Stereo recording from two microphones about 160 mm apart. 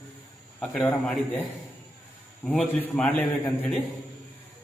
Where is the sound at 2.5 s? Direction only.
10° left (ahead or behind).